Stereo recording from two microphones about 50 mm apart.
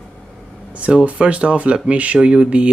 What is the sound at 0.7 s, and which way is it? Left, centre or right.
Speech, right.